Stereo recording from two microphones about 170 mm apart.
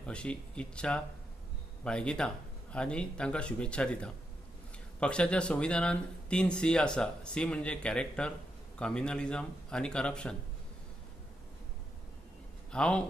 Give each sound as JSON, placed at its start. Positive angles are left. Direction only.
{"t": 0.0, "sound": "speech", "side_deg": 5}
{"t": 12.7, "sound": "speech", "side_deg": 5}